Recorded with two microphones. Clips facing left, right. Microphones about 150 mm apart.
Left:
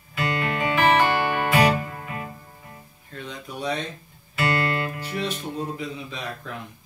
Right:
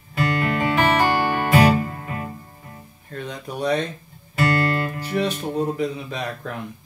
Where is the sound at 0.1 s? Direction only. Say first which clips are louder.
Right 4 dB; 40° right (ahead or behind).